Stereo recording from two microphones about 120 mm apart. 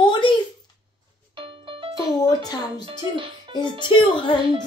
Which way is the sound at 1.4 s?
45° right (ahead or behind).